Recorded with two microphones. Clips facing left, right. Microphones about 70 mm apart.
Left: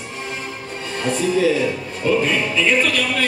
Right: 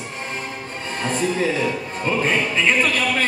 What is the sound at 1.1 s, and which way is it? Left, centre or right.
Speech, right.